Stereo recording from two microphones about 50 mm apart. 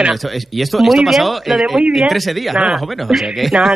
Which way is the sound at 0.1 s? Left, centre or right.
Centre.